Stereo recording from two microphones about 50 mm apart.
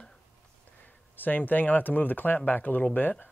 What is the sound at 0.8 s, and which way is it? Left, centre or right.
Speech, left.